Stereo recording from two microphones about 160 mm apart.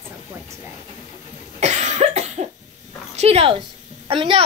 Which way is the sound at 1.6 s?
45° right (ahead or behind).